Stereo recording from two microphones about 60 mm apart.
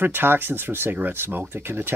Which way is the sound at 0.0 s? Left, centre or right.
Right.